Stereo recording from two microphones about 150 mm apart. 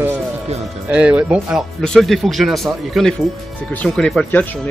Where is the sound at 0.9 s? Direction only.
10° right (ahead or behind).